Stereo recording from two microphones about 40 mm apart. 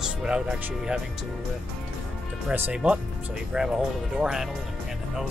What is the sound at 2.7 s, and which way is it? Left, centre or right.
Speech, right.